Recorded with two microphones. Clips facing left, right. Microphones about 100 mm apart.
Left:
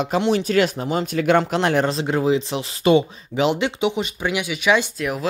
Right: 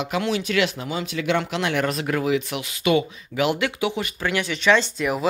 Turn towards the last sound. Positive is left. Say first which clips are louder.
# even
turn(degrees=10)  # may be behind; listen again after turning